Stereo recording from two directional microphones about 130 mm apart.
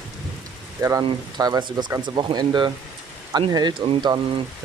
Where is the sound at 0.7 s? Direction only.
25° right (ahead or behind).